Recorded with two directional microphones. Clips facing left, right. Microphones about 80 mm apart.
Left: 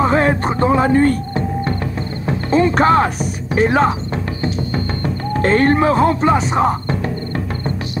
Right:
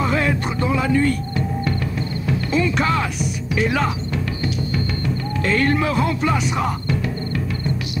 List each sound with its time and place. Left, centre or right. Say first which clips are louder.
0.0 s music: left 6 dB; left